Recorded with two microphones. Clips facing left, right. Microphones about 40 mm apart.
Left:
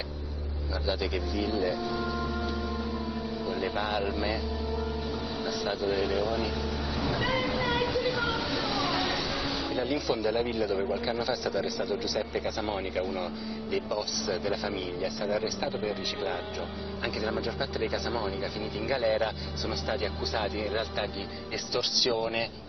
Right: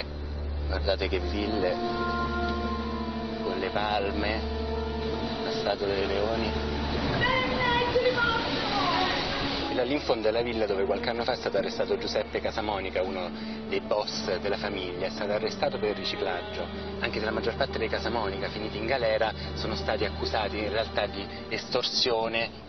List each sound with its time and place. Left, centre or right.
0.8 s speech: centre
1.5 s speech: centre
2.1 s music: centre
3.5 s speech: centre
5.4 s speech: centre
7.1 s a sound: centre
11.2 s speech: centre
18.9 s speech: centre
20.7 s speech: centre